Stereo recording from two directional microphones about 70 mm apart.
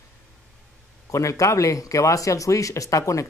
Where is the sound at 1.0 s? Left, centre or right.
Left.